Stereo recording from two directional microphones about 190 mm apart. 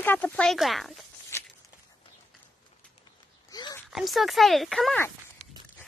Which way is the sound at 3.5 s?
20° left (ahead or behind).